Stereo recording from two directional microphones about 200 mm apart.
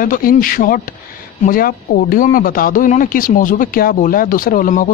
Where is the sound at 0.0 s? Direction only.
45° left (ahead or behind).